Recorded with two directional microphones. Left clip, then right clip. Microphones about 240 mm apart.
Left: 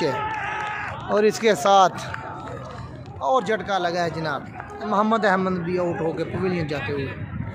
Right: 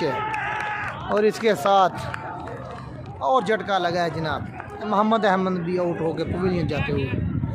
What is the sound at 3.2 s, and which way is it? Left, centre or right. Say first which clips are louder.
A man's voice: right 1 dB; centre.